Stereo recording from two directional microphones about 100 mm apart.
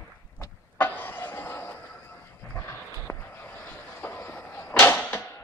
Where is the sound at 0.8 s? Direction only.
20° left (ahead or behind).